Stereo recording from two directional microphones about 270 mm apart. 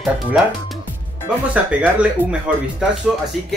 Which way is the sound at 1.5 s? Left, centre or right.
Centre.